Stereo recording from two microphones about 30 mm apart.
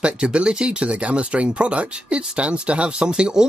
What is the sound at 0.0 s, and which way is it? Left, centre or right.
Speech, right.